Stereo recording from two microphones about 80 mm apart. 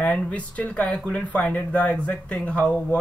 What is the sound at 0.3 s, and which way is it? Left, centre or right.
A man's voice, centre.